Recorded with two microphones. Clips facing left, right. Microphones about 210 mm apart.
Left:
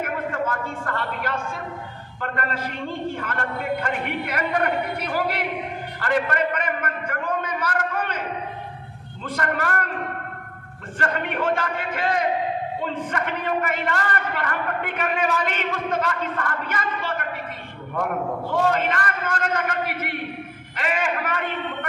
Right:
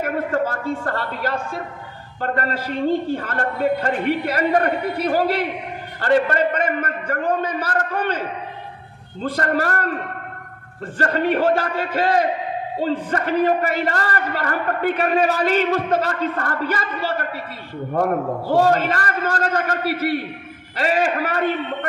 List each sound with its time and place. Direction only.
0.0 s a sound: 35° right (ahead or behind)
2.1 s a man's voice: 35° right (ahead or behind)
9.2 s a man's voice: 35° right (ahead or behind)
11.0 s a man's voice: 35° right (ahead or behind)